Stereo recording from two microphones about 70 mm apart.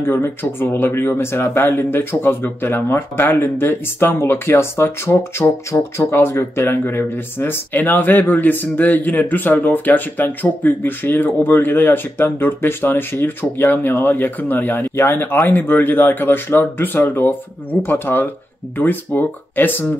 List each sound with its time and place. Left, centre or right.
0.0 s speech: left